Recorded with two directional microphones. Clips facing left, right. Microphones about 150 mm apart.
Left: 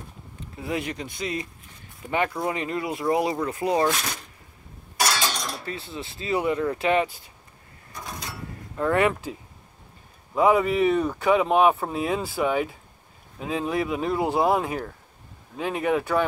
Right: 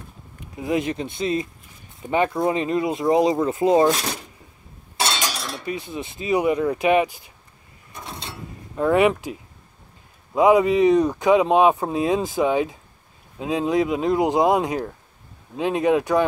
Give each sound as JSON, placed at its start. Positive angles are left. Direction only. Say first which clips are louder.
{"t": 0.4, "sound": "speech", "louder": "right 6 dB", "side_deg": -20}
{"t": 4.9, "sound": "a sound", "louder": "even", "side_deg": -25}
{"t": 5.3, "sound": "cutlery", "louder": "right 1 dB", "side_deg": -5}
{"t": 5.7, "sound": "speech", "louder": "right 5 dB", "side_deg": -15}
{"t": 7.9, "sound": "mechanisms", "louder": "right 1 dB", "side_deg": -25}
{"t": 8.7, "sound": "speech", "louder": "right 4 dB", "side_deg": -15}